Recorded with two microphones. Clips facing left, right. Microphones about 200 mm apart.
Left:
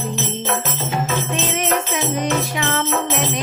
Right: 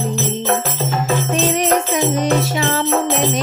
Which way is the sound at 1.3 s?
40° right (ahead or behind).